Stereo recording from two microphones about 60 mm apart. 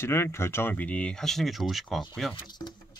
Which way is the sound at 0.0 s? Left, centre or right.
Left.